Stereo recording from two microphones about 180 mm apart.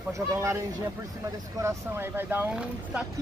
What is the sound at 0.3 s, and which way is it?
Speech, 15° right (ahead or behind).